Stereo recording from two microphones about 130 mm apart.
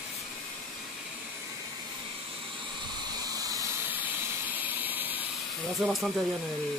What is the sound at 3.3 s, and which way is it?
Vehicle, 30° right (ahead or behind).